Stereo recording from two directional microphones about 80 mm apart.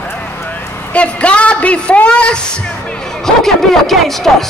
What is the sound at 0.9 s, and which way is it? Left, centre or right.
A man's voice, centre.